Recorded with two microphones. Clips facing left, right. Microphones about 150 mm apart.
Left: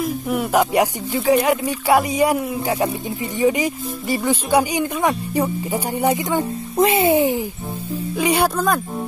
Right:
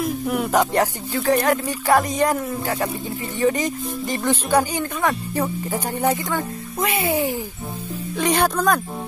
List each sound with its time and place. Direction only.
0.0 s a child's voice: centre (ahead or behind); by 7.4 s 20° left (ahead or behind)
8.2 s speech: 10° left (ahead or behind)